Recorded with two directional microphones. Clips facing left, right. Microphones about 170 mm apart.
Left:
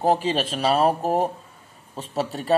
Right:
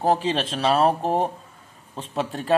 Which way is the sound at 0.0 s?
15° left (ahead or behind).